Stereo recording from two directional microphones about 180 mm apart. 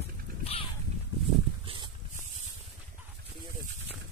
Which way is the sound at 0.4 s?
35° left (ahead or behind).